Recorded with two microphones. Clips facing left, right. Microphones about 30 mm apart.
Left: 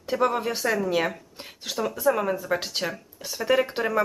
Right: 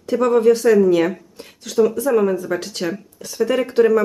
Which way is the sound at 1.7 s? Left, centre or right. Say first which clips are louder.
Right 13 dB; centre.